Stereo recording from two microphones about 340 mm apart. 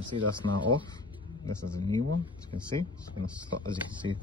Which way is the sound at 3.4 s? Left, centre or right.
Right.